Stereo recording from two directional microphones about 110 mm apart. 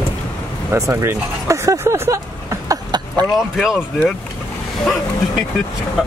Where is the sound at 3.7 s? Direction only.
15° left (ahead or behind).